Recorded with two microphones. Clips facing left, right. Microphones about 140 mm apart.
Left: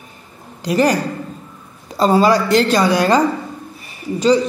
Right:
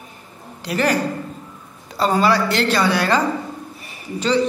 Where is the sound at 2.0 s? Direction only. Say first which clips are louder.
Left 4 dB; 15° left (ahead or behind).